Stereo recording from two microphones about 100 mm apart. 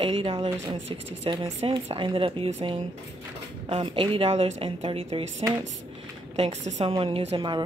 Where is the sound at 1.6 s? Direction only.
75° right (ahead or behind).